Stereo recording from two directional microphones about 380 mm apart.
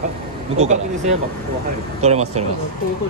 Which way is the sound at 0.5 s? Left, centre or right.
Centre.